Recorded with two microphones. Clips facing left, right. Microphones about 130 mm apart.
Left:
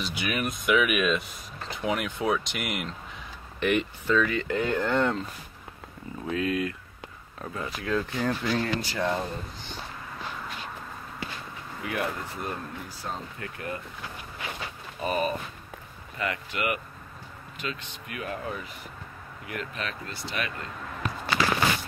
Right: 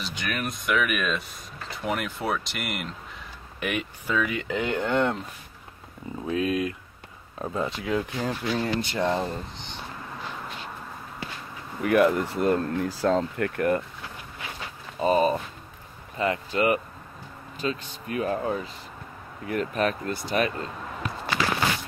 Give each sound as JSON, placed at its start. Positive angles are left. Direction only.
{"t": 0.0, "sound": "speech", "side_deg": 5}
{"t": 6.3, "sound": "speech", "side_deg": -20}
{"t": 11.8, "sound": "speech", "side_deg": -60}
{"t": 13.6, "sound": "speech", "side_deg": -55}
{"t": 15.0, "sound": "speech", "side_deg": -30}